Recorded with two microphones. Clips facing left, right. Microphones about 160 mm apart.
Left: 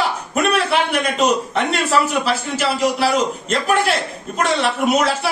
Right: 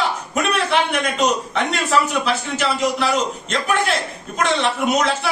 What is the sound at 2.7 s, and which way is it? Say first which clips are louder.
Speech: left 4 dB; 35° left (ahead or behind).